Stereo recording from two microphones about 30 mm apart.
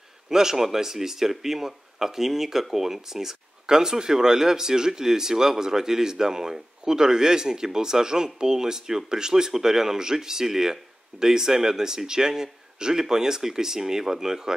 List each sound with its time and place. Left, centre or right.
0.3 s speech: centre